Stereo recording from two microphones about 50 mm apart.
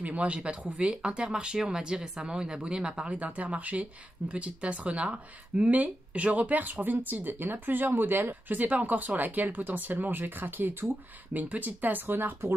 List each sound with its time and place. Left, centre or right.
0.0 s speech: right
3.2 s speech: right